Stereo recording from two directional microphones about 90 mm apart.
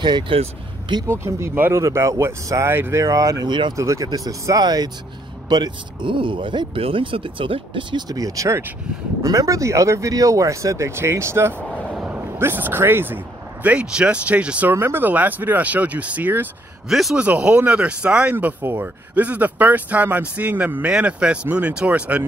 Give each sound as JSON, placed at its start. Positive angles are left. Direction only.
{"t": 0.0, "sound": "speech", "side_deg": -60}
{"t": 1.0, "sound": "speech", "side_deg": -30}
{"t": 6.1, "sound": "speech", "side_deg": -70}
{"t": 8.1, "sound": "speech", "side_deg": -40}
{"t": 11.7, "sound": "a sound", "side_deg": -10}
{"t": 12.4, "sound": "speech", "side_deg": -25}
{"t": 16.9, "sound": "speech", "side_deg": 0}
{"t": 17.2, "sound": "speech", "side_deg": -10}
{"t": 18.3, "sound": "speech", "side_deg": -25}